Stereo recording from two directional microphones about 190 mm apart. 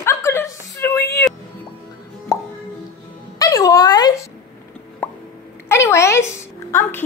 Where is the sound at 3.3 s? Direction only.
20° left (ahead or behind).